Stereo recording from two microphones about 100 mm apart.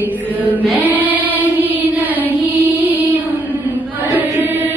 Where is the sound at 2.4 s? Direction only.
15° right (ahead or behind).